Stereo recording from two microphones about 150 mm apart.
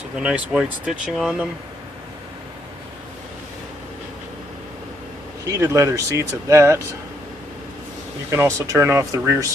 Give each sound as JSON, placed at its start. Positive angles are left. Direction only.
{"t": 0.1, "sound": "speech", "side_deg": -5}
{"t": 5.4, "sound": "speech", "side_deg": -20}
{"t": 8.3, "sound": "speech", "side_deg": -20}